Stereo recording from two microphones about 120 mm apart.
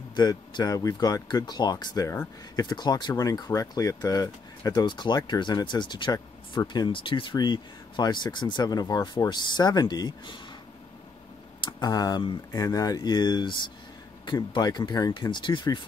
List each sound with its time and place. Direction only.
0.1 s speech: 35° left (ahead or behind)
11.6 s speech: 35° left (ahead or behind)